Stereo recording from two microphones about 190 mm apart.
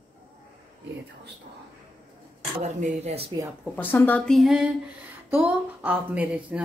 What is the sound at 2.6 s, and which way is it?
Speech, 35° right (ahead or behind).